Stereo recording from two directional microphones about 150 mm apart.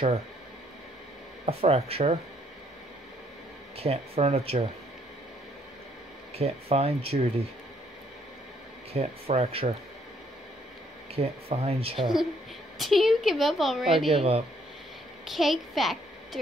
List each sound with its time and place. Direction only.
1.4 s speech: 45° right (ahead or behind)
3.7 s speech: 40° right (ahead or behind)
6.3 s speech: 45° right (ahead or behind)
8.9 s speech: 45° right (ahead or behind)
11.1 s speech: 40° right (ahead or behind)
12.7 s speech: centre (ahead or behind)
14.1 s speech: 40° right (ahead or behind)
15.2 s speech: centre (ahead or behind)